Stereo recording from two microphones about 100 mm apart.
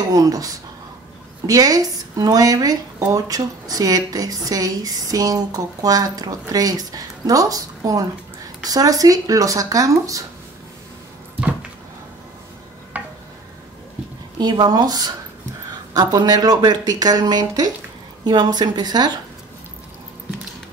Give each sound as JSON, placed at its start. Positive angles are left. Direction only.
{"t": 0.1, "sound": "speech", "side_deg": -40}
{"t": 12.9, "sound": "a sound", "side_deg": -15}
{"t": 14.4, "sound": "a woman's voice", "side_deg": -45}